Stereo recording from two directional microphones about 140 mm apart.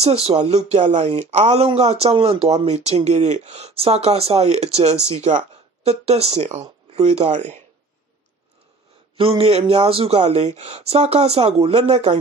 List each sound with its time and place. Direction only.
0.0 s speech: 45° right (ahead or behind)
9.4 s speech: 45° right (ahead or behind)